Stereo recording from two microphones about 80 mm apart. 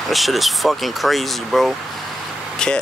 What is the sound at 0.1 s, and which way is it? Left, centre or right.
Speech, centre.